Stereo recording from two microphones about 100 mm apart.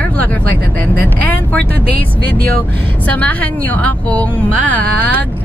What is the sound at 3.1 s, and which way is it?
A woman's voice, 15° left (ahead or behind).